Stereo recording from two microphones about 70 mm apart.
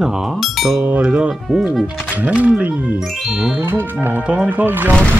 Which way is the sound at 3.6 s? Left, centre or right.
Right.